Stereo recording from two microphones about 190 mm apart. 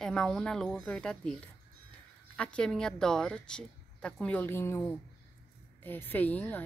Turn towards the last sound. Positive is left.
turn(degrees=10)  # may be behind; listen again after turning